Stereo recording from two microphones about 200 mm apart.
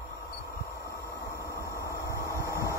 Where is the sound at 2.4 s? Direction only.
15° right (ahead or behind).